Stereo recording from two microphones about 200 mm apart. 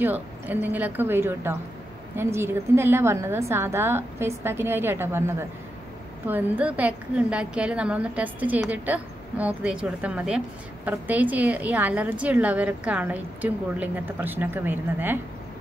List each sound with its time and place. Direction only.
0.0 s a woman's voice: 10° right (ahead or behind)